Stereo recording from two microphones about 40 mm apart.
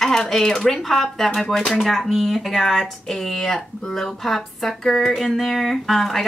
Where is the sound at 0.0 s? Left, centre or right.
Centre.